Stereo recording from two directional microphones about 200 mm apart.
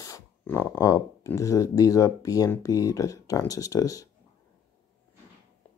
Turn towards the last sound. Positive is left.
turn(degrees=15)  # may be behind; listen again after turning